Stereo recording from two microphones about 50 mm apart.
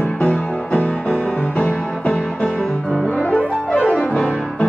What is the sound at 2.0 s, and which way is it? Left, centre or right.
Music, centre.